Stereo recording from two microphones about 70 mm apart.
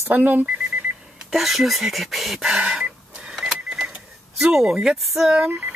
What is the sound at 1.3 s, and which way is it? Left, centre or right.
Speech, centre.